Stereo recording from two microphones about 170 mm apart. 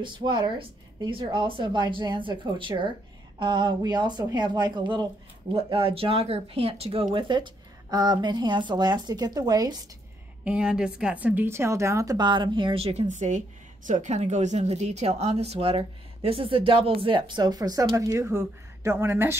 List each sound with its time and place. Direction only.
0.0 s speech: 30° right (ahead or behind)
10.4 s a woman's voice: 5° right (ahead or behind)